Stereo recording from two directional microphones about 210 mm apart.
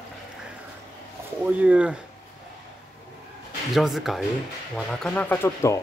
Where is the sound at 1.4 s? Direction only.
5° right (ahead or behind).